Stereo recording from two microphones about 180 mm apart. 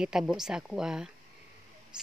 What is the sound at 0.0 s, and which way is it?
Speech, 5° right (ahead or behind).